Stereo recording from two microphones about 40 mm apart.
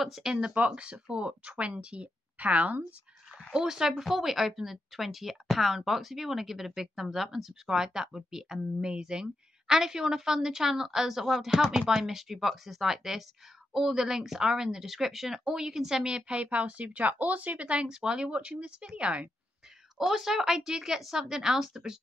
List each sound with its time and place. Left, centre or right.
0.2 s speech: centre
0.7 s a woman's voice: right
3.5 s speech: centre
4.0 s speech: centre
8.8 s speech: right
17.8 s a woman's voice: centre
20.1 s speech: centre